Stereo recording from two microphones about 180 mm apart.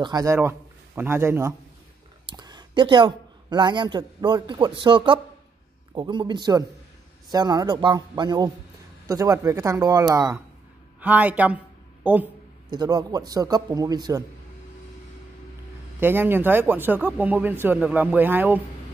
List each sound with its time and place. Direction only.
0.0 s a man's voice: 20° right (ahead or behind)
2.2 s a man's voice: 25° right (ahead or behind)
12.7 s a man's voice: 20° right (ahead or behind)
16.0 s a man's voice: 10° right (ahead or behind)